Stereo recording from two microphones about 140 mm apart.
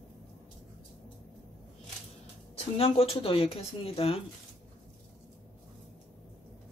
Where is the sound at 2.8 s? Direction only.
45° left (ahead or behind).